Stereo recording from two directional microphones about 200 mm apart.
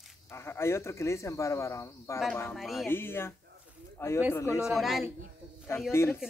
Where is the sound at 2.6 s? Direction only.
Centre (ahead or behind).